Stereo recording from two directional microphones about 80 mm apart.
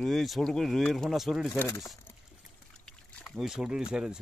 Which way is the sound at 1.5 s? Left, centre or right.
Left.